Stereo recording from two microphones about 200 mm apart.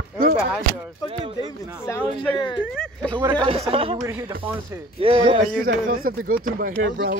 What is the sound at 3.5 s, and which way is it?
A woman's voice, 30° right (ahead or behind).